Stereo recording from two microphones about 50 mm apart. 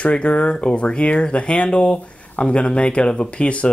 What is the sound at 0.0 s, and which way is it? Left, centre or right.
Speech, left.